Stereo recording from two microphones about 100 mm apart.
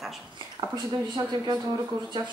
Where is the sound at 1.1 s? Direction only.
45° right (ahead or behind).